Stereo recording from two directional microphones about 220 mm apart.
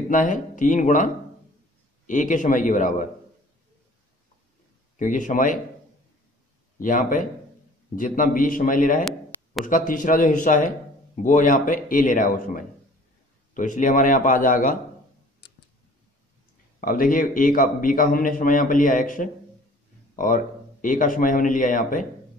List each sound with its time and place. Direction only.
0.1 s a man's voice: 35° left (ahead or behind)
4.9 s a man's voice: 35° left (ahead or behind)
6.8 s a man's voice: 35° left (ahead or behind)
16.8 s a man's voice: 40° left (ahead or behind)